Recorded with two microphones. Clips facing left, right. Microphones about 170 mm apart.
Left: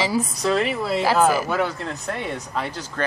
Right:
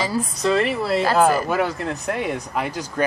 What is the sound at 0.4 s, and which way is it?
Speech, centre (ahead or behind).